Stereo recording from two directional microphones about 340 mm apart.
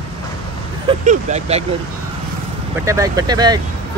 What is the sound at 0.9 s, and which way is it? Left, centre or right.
Speech, centre.